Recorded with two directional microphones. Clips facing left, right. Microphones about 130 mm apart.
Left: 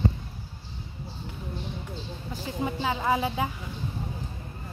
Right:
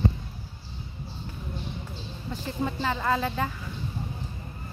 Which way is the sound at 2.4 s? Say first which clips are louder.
Even; 10° left (ahead or behind).